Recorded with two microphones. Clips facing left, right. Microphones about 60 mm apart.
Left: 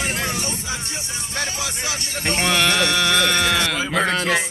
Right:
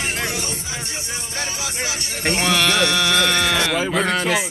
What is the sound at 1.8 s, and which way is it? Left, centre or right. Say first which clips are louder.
Speech: right 2 dB; centre.